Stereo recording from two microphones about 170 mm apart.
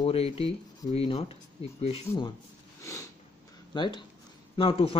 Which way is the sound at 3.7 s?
30° left (ahead or behind).